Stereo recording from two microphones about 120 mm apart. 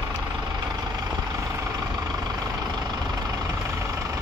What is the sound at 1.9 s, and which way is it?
Vehicle, 35° right (ahead or behind).